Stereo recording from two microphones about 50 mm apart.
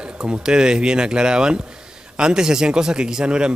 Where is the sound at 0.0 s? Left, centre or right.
Centre.